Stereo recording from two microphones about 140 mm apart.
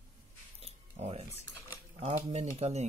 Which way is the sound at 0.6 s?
45° right (ahead or behind).